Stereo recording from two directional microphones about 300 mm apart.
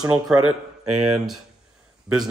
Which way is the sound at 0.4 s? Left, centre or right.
Right.